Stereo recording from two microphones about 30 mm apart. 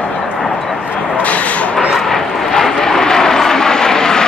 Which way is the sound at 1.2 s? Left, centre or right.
Left.